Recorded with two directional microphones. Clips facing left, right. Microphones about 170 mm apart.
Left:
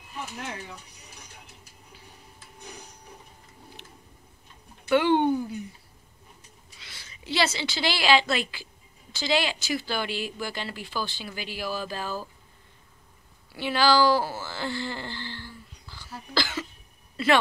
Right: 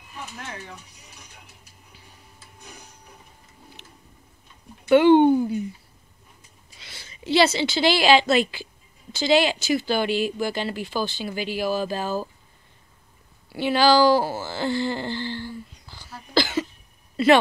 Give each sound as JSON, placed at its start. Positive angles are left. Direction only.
{"t": 4.8, "sound": "speech", "side_deg": -20}
{"t": 6.8, "sound": "a woman's voice", "side_deg": -25}
{"t": 13.6, "sound": "speech", "side_deg": -20}
{"t": 16.3, "sound": "cough", "side_deg": -20}